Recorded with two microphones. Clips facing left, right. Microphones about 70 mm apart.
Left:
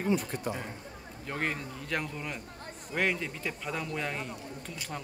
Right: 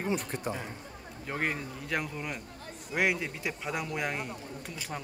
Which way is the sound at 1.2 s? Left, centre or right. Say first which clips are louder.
Right 1 dB; centre.